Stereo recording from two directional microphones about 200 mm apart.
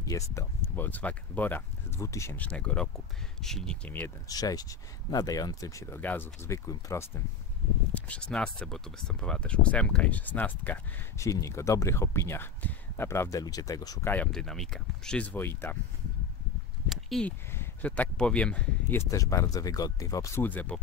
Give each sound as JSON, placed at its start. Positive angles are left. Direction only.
{"t": 0.1, "sound": "speech", "side_deg": 15}
{"t": 4.3, "sound": "speech", "side_deg": 20}
{"t": 16.9, "sound": "a sound", "side_deg": 0}
{"t": 17.5, "sound": "speech", "side_deg": 10}